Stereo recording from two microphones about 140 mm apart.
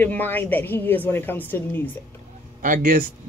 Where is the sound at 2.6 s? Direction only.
90° right.